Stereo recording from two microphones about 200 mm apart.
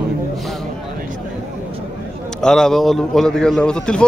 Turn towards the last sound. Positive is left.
turn(degrees=5)  # may be behind; listen again after turning